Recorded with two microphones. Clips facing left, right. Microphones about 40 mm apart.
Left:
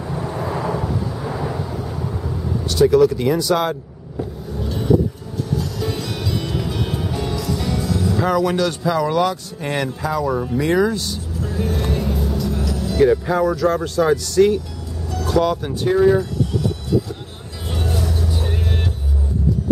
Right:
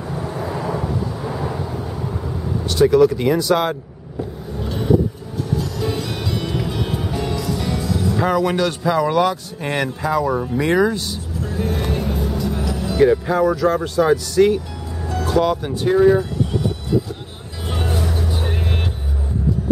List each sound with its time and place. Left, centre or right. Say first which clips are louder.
0.1 s vehicle: left 1 dB; centre
0.7 s thunder: even; centre
2.2 s speech: even; centre
4.6 s vehicle: even; centre
5.5 s music: right 2 dB; centre
15.2 s speech: even; centre
17.6 s vehicle: right 1 dB; centre